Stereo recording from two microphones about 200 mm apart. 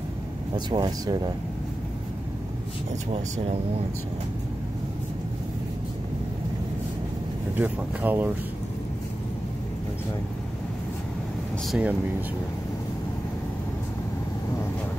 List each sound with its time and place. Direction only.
0.7 s speech: 20° right (ahead or behind)
7.5 s speech: 10° right (ahead or behind)
11.6 s speech: centre (ahead or behind)